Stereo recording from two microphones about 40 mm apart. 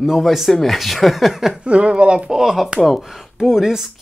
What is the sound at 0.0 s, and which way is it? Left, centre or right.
Speech, centre.